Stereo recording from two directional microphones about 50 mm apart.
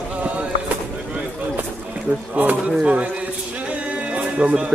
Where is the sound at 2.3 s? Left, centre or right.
Right.